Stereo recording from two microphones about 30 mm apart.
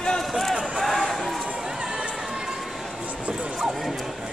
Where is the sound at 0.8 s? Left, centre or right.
Centre.